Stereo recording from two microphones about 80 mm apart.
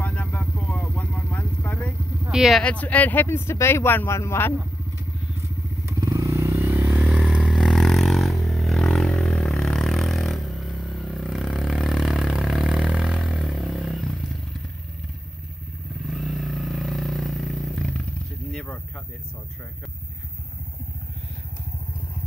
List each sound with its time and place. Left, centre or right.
0.0 s vehicle: left
2.3 s speech: centre
2.6 s speech: centre
5.9 s motorcycle: right
6.8 s vehicle: centre
16.0 s vehicle: centre
18.5 s a sound: centre